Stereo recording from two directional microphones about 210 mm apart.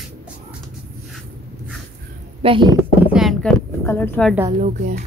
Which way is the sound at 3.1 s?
Centre (ahead or behind).